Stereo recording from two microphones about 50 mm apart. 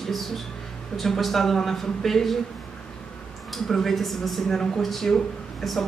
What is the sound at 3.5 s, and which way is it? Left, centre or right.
Speech, centre.